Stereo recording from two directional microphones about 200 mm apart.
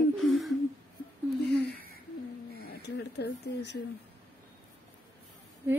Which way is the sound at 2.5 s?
55° left (ahead or behind).